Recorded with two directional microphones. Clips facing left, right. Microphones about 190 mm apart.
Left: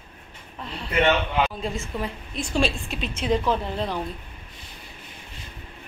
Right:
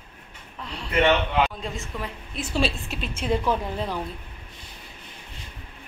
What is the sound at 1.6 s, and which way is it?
A woman's voice, centre (ahead or behind).